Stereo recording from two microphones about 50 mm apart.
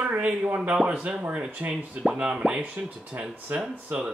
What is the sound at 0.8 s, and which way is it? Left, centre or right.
Speech, centre.